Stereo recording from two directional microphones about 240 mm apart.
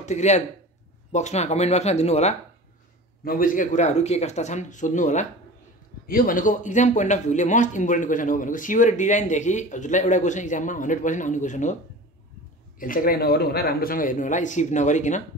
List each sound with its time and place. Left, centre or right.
0.0 s speech: left
12.7 s speech: left